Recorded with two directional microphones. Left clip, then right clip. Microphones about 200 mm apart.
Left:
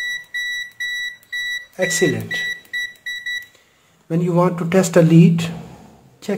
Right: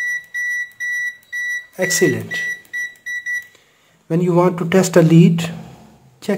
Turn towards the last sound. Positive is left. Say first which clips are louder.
# right 3 dB
turn(degrees=-25)  # may be behind; listen again after turning